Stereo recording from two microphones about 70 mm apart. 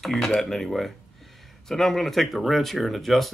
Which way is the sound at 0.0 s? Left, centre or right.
Centre.